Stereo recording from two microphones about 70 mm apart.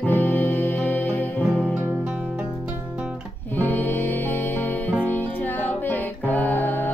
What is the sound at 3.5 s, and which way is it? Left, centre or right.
Music, left.